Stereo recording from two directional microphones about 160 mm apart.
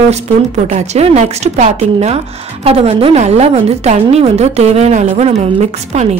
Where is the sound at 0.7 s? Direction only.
40° right (ahead or behind).